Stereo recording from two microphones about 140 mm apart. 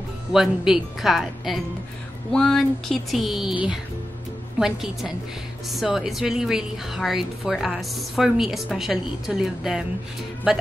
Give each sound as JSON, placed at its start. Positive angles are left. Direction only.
{"t": 0.3, "sound": "a woman's voice", "side_deg": -5}